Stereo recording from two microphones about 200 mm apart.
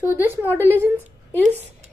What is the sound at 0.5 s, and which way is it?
Speech, 10° left (ahead or behind).